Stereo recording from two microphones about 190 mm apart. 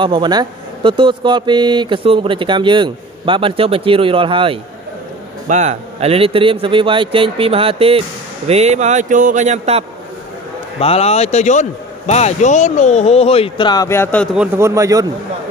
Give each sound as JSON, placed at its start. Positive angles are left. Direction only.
{"t": 0.0, "sound": "speech", "side_deg": -25}
{"t": 5.5, "sound": "a man's voice", "side_deg": -40}
{"t": 10.8, "sound": "speech", "side_deg": 35}
{"t": 14.3, "sound": "a man's voice", "side_deg": -10}